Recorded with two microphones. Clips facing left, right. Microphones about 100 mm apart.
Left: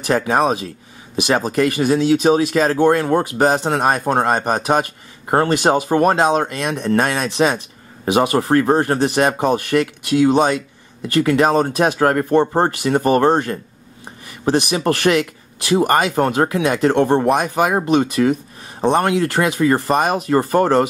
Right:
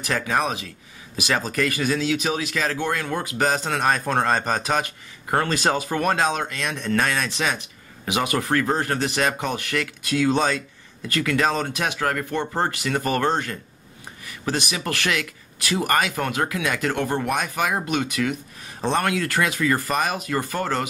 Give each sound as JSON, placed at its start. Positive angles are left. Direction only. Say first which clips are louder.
{"t": 0.0, "sound": "speech", "louder": "left 7 dB", "side_deg": 30}
{"t": 18.8, "sound": "speech", "louder": "left 7 dB", "side_deg": 20}